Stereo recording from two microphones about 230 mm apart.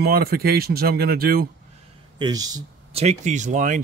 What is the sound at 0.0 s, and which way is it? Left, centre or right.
Speech, right.